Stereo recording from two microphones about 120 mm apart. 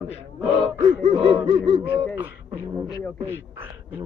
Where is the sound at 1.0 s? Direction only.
45° right (ahead or behind).